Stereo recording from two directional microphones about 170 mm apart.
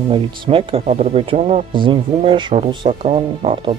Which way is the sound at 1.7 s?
30° right (ahead or behind).